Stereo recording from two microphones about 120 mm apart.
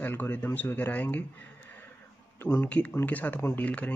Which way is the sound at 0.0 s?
15° left (ahead or behind).